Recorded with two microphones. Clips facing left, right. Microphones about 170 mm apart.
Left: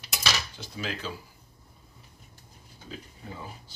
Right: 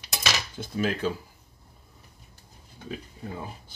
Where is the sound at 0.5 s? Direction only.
50° right (ahead or behind).